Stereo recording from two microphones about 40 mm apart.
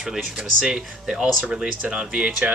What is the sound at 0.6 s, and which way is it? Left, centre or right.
Speech, centre.